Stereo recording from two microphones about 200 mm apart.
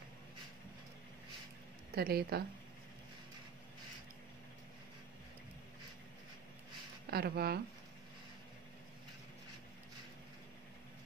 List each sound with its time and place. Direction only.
2.0 s speech: 50° right (ahead or behind)
7.1 s speech: 50° right (ahead or behind)